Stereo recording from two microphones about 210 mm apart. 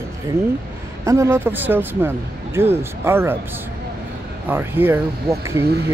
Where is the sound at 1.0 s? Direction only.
15° right (ahead or behind).